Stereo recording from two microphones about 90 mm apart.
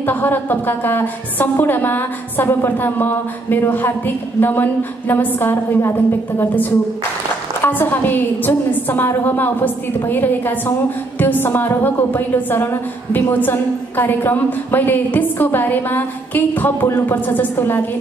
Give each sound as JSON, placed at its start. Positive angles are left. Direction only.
{"t": 0.0, "sound": "a woman's voice", "side_deg": 20}